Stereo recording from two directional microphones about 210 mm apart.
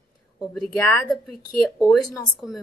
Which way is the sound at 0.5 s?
5° left (ahead or behind).